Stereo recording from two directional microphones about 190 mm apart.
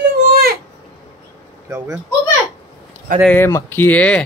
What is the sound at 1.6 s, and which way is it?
Speech, 15° right (ahead or behind).